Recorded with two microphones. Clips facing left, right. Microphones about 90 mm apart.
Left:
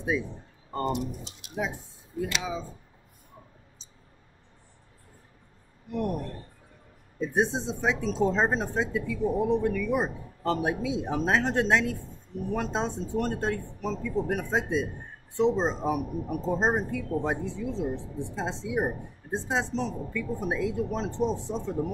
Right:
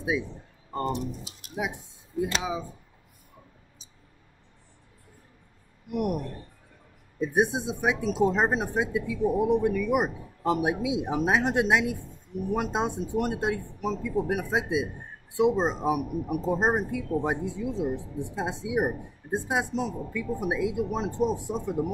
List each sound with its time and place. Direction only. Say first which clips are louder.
0.1 s speech: even; 5° right (ahead or behind)
1.6 s speech: even; 20° right (ahead or behind)
5.9 s speech: right 2 dB; 15° right (ahead or behind)